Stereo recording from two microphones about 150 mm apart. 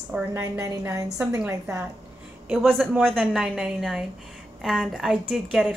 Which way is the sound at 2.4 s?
Centre (ahead or behind).